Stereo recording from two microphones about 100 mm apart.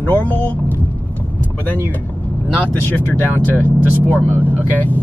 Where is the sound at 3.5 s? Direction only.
20° left (ahead or behind).